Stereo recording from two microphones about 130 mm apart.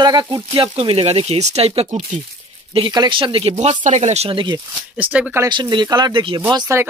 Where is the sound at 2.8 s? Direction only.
35° right (ahead or behind).